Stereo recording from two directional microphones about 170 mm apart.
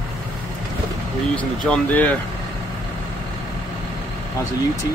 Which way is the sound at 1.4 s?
5° left (ahead or behind).